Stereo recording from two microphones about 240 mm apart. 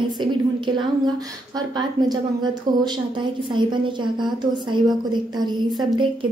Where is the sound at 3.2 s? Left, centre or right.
Centre.